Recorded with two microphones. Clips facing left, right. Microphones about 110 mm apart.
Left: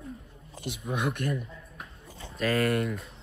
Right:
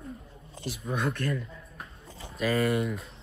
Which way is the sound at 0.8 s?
15° left (ahead or behind).